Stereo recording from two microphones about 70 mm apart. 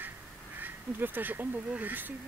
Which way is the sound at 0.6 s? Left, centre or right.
Right.